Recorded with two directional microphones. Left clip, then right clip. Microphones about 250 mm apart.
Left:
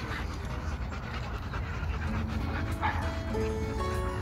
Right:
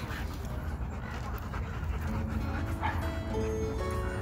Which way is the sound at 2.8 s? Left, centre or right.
Centre.